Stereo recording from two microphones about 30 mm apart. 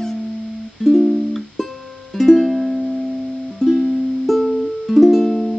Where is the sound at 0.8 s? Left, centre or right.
Centre.